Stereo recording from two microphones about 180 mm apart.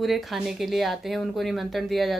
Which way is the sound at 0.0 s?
Centre (ahead or behind).